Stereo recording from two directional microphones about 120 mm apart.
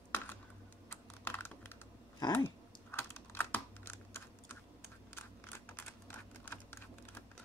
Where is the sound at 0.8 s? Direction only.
20° left (ahead or behind).